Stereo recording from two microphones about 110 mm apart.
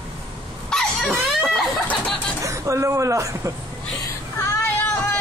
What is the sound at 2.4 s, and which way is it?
Speech, 30° right (ahead or behind).